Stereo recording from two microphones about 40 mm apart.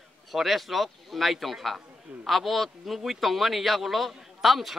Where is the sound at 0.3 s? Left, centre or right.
Centre.